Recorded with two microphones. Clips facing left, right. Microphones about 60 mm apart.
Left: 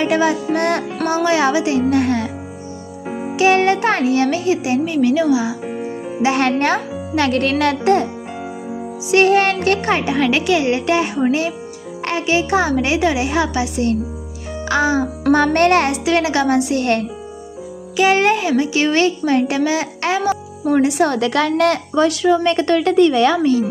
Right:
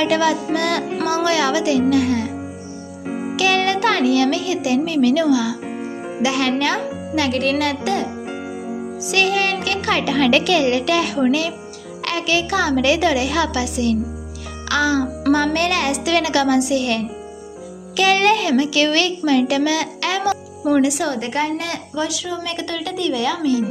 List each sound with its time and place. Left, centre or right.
0.0 s speech: left
3.3 s speech: left
5.7 s music: centre
6.2 s speech: left
9.8 s a child's voice: left
15.3 s speech: left
16.0 s speech: left
17.9 s speech: left
20.2 s music: centre
20.8 s speech: left
21.2 s a woman's voice: left